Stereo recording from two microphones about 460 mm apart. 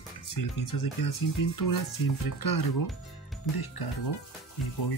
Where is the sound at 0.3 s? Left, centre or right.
Left.